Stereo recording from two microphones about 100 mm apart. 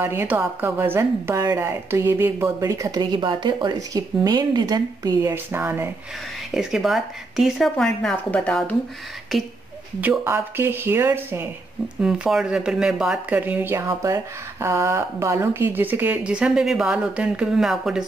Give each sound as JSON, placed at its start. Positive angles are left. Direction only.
{"t": 0.0, "sound": "speech", "side_deg": -25}
{"t": 2.6, "sound": "a woman's voice", "side_deg": -35}
{"t": 3.0, "sound": "speech", "side_deg": -50}
{"t": 3.9, "sound": "a woman's voice", "side_deg": -40}
{"t": 5.3, "sound": "speech", "side_deg": -20}
{"t": 6.5, "sound": "speech", "side_deg": -5}
{"t": 9.9, "sound": "speech", "side_deg": -20}
{"t": 12.0, "sound": "speech", "side_deg": -5}
{"t": 13.3, "sound": "speech", "side_deg": -15}